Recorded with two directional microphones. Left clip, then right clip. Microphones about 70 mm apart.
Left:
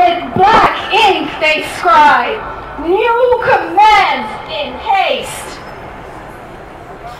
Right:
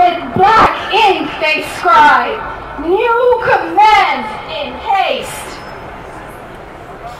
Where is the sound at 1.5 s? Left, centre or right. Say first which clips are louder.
Even; left.